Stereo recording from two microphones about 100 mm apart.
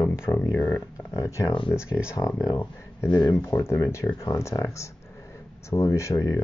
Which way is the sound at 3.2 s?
35° left (ahead or behind).